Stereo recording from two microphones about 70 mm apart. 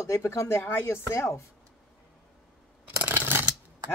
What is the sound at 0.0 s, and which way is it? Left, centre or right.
Speech, left.